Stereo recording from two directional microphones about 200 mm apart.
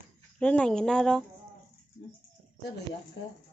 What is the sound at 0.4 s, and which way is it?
Speech, 5° left (ahead or behind).